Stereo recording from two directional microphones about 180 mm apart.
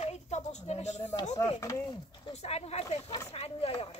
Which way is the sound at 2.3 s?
35° left (ahead or behind).